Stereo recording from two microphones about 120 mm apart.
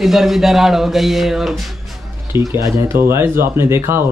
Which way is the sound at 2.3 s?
25° right (ahead or behind).